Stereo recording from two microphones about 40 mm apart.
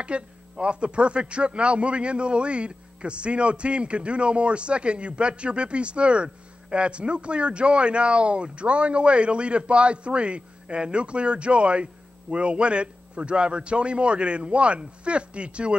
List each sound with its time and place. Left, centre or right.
0.0 s speech: right